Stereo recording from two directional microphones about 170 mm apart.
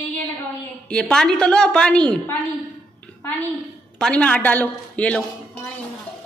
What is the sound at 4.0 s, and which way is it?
A woman's voice, 5° left (ahead or behind).